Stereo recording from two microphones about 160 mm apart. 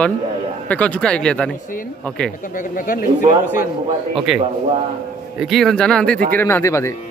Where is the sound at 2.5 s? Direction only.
60° left (ahead or behind).